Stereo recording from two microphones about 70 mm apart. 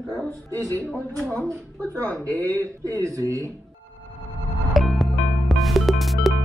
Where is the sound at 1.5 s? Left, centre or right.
Right.